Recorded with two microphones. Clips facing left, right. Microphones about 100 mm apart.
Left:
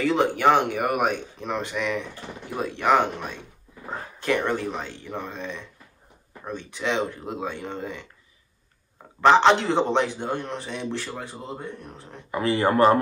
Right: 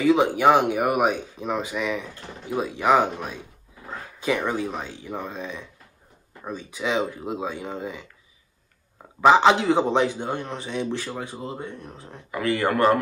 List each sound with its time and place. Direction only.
0.0 s speech: 5° right (ahead or behind)
9.2 s speech: 5° right (ahead or behind)
12.3 s speech: 30° left (ahead or behind)